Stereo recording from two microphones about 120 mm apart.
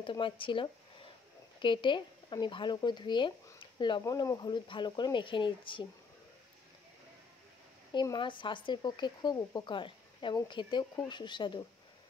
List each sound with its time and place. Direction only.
0.0 s speech: 45° left (ahead or behind)
3.5 s a sound: 40° left (ahead or behind)
4.0 s speech: 25° left (ahead or behind); by 5.9 s 45° left (ahead or behind)
7.9 s speech: 40° left (ahead or behind)